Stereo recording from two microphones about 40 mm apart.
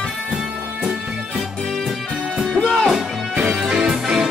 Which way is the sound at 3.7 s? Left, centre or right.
Centre.